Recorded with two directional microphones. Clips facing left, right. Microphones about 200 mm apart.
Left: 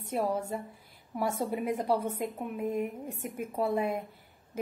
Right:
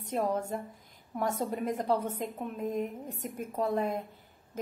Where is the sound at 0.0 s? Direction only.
10° left (ahead or behind).